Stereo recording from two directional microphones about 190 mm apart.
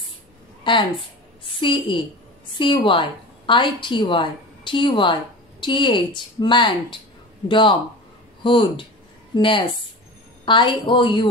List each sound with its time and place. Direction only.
0.7 s a woman's voice: 25° left (ahead or behind)